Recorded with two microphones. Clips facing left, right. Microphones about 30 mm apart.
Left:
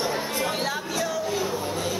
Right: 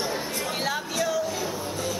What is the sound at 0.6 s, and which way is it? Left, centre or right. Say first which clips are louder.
Speech: even; centre.